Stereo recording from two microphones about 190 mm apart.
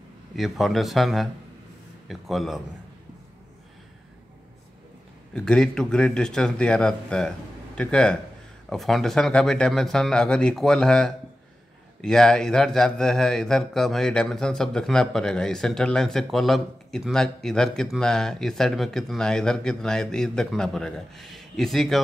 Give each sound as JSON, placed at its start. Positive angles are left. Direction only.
{"t": 0.4, "sound": "speech", "side_deg": 0}
{"t": 5.3, "sound": "speech", "side_deg": 5}